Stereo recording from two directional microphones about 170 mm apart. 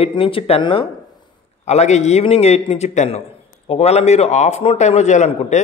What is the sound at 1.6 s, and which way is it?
Speech, 40° left (ahead or behind).